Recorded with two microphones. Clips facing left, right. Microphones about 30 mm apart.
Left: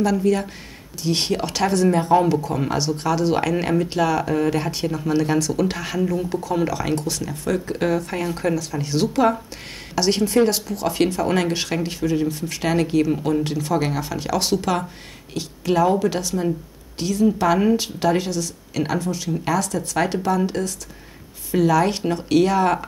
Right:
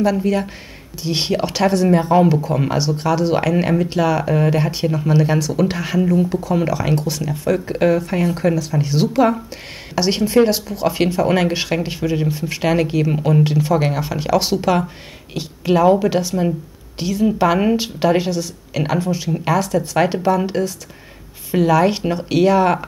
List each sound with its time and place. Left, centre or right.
0.0 s speech: centre